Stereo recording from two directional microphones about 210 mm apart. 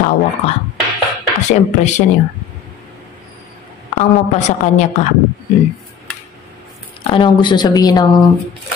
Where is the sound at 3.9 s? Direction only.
35° left (ahead or behind).